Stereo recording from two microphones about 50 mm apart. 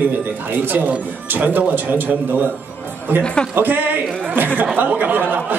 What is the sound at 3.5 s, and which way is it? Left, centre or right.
Speech, right.